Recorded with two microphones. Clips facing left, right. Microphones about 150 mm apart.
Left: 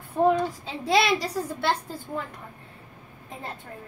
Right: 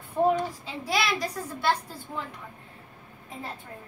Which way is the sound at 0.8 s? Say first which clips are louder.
Left 6 dB; 30° left (ahead or behind).